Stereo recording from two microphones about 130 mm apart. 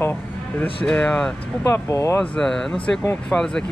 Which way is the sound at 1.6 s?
20° left (ahead or behind).